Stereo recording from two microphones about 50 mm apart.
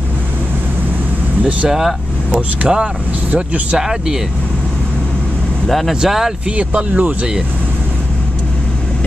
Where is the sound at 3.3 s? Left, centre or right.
Right.